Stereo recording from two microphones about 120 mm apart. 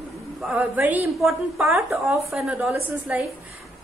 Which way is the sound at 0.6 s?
15° right (ahead or behind).